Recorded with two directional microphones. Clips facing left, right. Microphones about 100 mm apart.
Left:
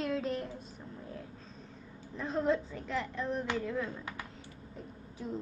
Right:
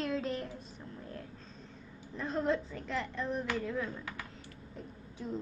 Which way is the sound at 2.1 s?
Centre (ahead or behind).